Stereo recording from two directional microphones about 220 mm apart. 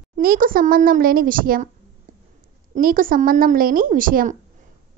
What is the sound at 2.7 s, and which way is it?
A woman's voice, 40° right (ahead or behind).